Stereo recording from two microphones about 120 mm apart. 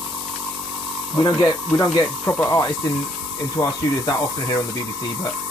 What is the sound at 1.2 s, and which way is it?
Speech, 35° left (ahead or behind).